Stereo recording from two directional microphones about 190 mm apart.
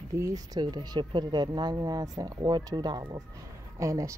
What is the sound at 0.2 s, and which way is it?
Speech, 20° right (ahead or behind).